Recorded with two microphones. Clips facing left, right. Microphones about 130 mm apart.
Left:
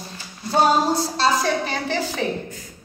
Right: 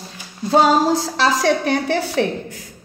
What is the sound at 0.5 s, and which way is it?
A woman's voice, 90° right.